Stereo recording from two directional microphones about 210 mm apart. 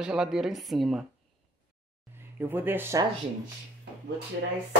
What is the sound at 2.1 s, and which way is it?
Speech, 10° right (ahead or behind).